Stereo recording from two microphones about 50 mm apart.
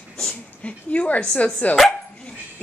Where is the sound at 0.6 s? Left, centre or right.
Left.